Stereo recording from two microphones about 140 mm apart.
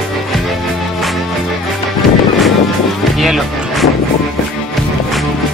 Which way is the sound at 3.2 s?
Centre (ahead or behind).